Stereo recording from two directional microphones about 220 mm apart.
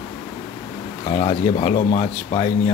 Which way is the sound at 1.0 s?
30° left (ahead or behind).